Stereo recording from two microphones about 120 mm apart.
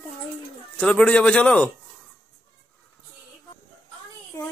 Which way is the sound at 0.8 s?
10° left (ahead or behind).